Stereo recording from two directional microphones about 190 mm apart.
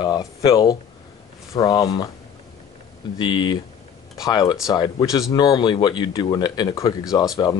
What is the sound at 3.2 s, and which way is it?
Speech, 25° left (ahead or behind).